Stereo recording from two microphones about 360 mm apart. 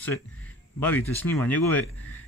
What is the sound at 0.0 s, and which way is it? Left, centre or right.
Speech, centre.